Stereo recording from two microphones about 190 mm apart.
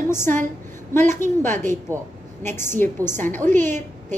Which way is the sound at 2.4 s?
10° left (ahead or behind).